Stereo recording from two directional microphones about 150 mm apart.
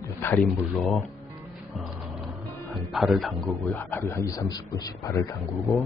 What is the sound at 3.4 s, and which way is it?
A man's voice, 15° left (ahead or behind).